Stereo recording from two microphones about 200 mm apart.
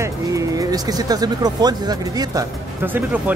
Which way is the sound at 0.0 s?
15° right (ahead or behind).